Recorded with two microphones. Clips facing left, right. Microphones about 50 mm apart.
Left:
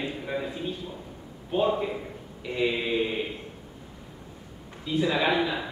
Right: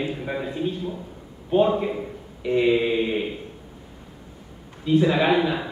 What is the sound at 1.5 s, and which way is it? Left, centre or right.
A man's voice, centre.